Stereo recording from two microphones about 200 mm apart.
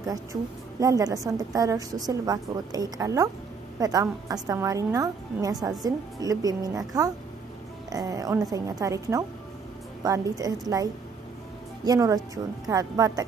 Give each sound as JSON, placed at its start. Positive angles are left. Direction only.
{"t": 0.1, "sound": "a woman's voice", "side_deg": -15}